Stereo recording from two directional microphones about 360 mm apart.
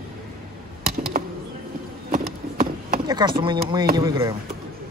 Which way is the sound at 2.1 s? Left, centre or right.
Right.